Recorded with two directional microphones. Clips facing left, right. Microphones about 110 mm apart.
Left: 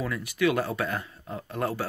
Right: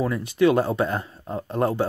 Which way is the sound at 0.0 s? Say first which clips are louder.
Right 6 dB; 30° right (ahead or behind).